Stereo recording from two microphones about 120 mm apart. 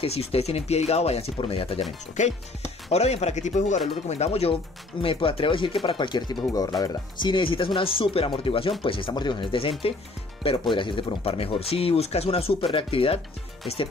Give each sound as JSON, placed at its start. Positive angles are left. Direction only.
{"t": 0.0, "sound": "speech", "side_deg": 55}
{"t": 2.2, "sound": "speech", "side_deg": 90}
{"t": 2.9, "sound": "speech", "side_deg": 65}
{"t": 4.1, "sound": "speech", "side_deg": 60}
{"t": 5.0, "sound": "speech", "side_deg": 50}